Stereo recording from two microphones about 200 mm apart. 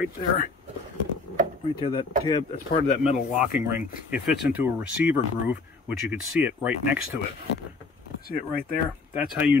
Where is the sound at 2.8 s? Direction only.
35° left (ahead or behind).